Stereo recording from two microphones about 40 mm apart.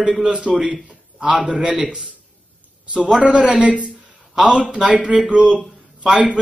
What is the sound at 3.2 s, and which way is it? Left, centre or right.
A man's voice, right.